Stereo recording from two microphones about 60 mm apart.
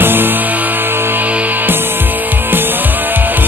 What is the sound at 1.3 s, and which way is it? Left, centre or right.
Music, right.